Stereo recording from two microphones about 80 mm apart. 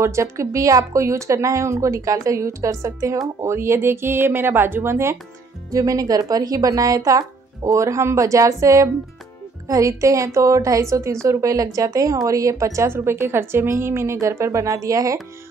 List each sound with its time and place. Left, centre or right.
0.0 s speech: right
5.7 s speech: right